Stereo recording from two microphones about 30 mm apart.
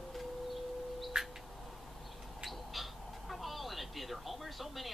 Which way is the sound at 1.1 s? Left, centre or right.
Centre.